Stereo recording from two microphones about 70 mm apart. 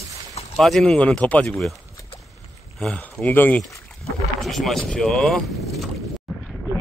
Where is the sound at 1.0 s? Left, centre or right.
Centre.